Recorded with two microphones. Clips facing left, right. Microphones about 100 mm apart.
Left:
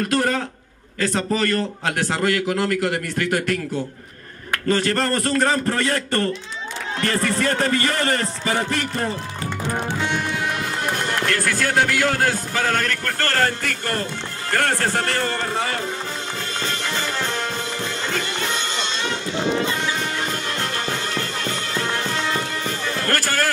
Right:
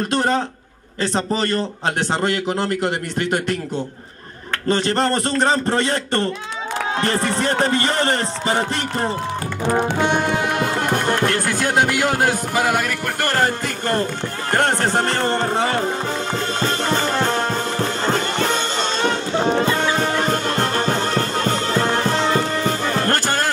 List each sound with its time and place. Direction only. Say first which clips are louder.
0.1 s music: right 2 dB; 25° right (ahead or behind)
16.6 s music: right 6 dB; 40° right (ahead or behind)
20.0 s music: right 6 dB; 40° right (ahead or behind); by 23.5 s 20° right (ahead or behind)